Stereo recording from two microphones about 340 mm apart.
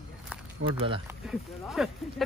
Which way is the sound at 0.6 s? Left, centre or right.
Right.